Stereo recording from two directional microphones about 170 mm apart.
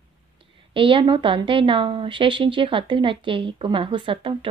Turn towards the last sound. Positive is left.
turn(degrees=-30)  # may be behind; listen again after turning